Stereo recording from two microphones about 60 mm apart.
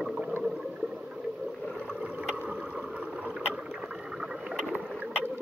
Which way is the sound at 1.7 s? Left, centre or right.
Centre.